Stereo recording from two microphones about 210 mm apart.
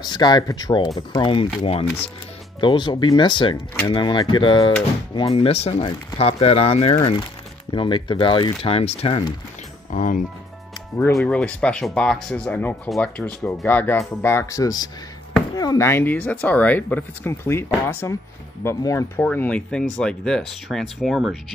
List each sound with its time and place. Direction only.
0.0 s speech: 20° left (ahead or behind)
9.8 s speech: 40° left (ahead or behind)
11.1 s speech: 5° left (ahead or behind)